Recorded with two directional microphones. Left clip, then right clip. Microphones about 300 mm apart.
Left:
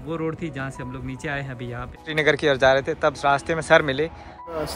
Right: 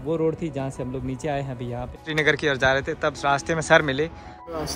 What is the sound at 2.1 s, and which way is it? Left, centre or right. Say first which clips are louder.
Speech: left 2 dB; centre.